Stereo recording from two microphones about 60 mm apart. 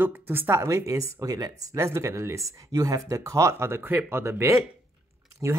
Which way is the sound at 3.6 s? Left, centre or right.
Right.